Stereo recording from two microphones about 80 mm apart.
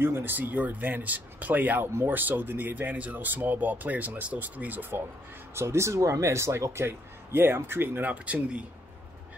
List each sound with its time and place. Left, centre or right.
0.0 s speech: right
5.5 s speech: right; by 8.6 s centre